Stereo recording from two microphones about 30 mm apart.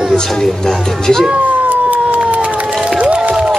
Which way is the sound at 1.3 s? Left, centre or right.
Right.